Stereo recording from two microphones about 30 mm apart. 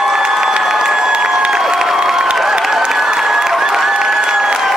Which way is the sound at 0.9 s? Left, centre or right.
Right.